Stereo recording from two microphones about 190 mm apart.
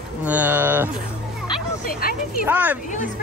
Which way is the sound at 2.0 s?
50° left (ahead or behind).